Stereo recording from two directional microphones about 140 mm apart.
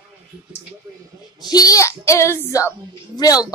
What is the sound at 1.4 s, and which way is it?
Speech, 30° left (ahead or behind).